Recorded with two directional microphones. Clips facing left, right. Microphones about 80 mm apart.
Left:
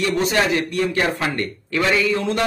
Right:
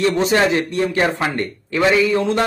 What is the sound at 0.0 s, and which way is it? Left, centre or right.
A man's voice, right.